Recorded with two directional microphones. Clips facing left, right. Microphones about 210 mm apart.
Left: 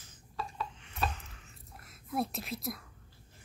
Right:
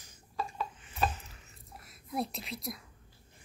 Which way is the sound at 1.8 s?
Centre (ahead or behind).